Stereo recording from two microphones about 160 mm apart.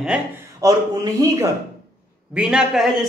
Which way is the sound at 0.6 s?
20° right (ahead or behind).